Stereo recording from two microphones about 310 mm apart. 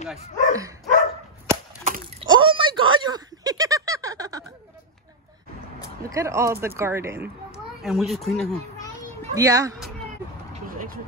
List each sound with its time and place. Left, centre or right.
0.1 s speech: centre
1.9 s a sound: centre
6.0 s a child's voice: centre
9.2 s speech: centre